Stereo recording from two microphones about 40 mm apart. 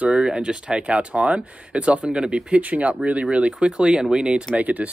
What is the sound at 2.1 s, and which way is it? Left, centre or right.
Speech, right.